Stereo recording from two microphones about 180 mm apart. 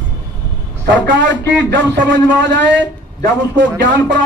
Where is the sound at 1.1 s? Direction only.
90° right.